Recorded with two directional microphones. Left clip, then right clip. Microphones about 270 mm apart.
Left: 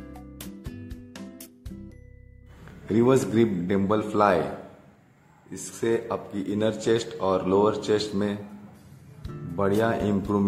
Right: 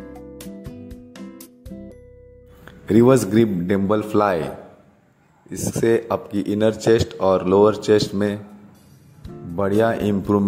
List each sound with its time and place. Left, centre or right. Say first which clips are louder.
0.4 s music: right 5 dB; centre
2.9 s a man's voice: right 7 dB; right
5.5 s a man's voice: right 8 dB; right
9.6 s a man's voice: right 5 dB; right